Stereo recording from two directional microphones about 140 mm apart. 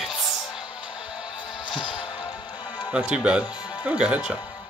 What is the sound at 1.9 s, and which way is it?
Music, 35° left (ahead or behind).